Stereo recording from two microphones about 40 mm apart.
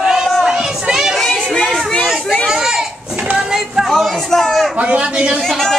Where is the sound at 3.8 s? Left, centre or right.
Centre.